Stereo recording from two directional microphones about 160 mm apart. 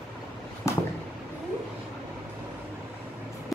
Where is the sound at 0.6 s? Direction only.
20° left (ahead or behind).